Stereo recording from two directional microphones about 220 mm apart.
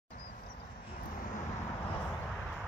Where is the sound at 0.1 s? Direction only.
40° left (ahead or behind).